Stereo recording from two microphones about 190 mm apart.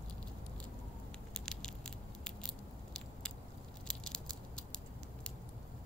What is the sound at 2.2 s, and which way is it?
Biting, 5° left (ahead or behind).